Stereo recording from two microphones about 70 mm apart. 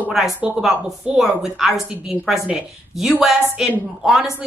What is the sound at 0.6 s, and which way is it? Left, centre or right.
A woman's voice, centre.